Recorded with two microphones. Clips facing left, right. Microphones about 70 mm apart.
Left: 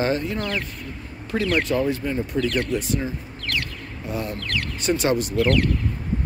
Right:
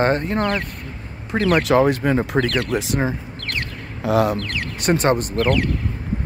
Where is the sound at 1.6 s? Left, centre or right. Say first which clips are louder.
Right 7 dB; right.